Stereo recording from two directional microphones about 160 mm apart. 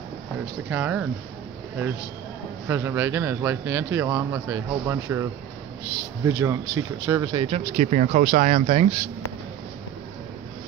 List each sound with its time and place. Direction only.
0.7 s speech: 10° right (ahead or behind)
2.7 s speech: 15° right (ahead or behind)
6.2 s speech: 20° right (ahead or behind)
7.4 s speech: 45° right (ahead or behind)